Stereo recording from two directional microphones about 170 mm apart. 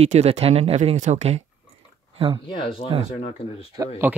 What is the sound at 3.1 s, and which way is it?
Speech, 35° left (ahead or behind).